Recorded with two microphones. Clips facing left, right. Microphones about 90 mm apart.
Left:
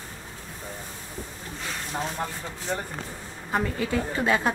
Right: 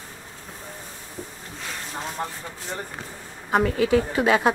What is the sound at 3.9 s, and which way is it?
Speech, 10° right (ahead or behind).